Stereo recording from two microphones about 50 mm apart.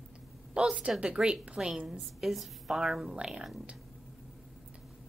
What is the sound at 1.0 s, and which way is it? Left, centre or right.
Speech, centre.